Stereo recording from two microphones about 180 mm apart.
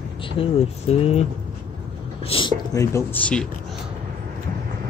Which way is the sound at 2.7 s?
15° left (ahead or behind).